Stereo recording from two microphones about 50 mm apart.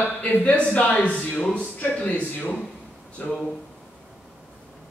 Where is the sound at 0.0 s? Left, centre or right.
Left.